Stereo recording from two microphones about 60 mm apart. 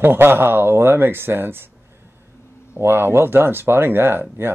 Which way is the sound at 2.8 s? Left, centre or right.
Right.